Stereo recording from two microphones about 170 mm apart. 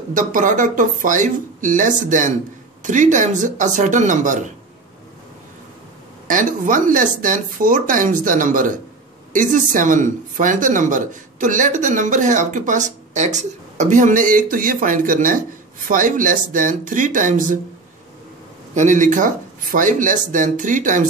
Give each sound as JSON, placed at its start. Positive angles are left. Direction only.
{"t": 0.1, "sound": "speech", "side_deg": -50}
{"t": 6.2, "sound": "speech", "side_deg": -50}
{"t": 18.8, "sound": "speech", "side_deg": -45}